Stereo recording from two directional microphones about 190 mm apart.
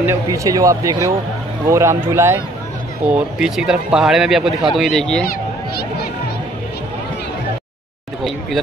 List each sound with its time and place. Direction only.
0.0 s speech: 15° right (ahead or behind); by 5.2 s 5° left (ahead or behind)